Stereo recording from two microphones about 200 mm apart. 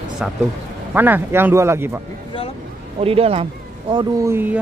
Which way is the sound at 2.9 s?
30° right (ahead or behind).